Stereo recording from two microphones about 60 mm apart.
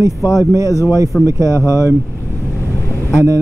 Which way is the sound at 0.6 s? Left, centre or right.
Left.